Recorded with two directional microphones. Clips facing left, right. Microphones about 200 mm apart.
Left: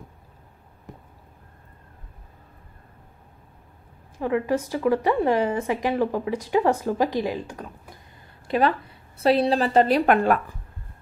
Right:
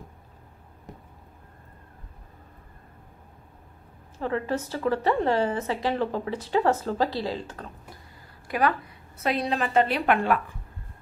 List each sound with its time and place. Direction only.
4.2 s a woman's voice: 15° left (ahead or behind)
8.5 s a woman's voice: 25° left (ahead or behind); by 10.4 s 45° left (ahead or behind)